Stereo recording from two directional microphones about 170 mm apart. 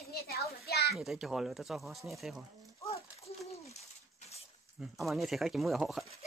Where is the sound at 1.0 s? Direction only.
Centre (ahead or behind).